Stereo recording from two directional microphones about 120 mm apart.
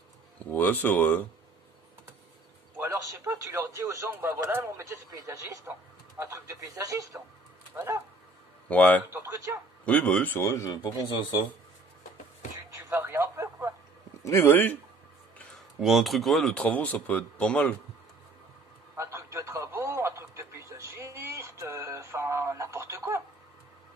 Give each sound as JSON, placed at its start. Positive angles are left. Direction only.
{"t": 0.5, "sound": "speech", "side_deg": 15}
{"t": 2.8, "sound": "a man's voice", "side_deg": -25}
{"t": 8.6, "sound": "speech", "side_deg": 10}
{"t": 9.1, "sound": "a man's voice", "side_deg": -25}
{"t": 9.8, "sound": "speech", "side_deg": 10}
{"t": 12.7, "sound": "radio", "side_deg": -20}
{"t": 14.2, "sound": "speech", "side_deg": 20}
{"t": 15.8, "sound": "speech", "side_deg": 0}
{"t": 18.9, "sound": "a sound", "side_deg": -25}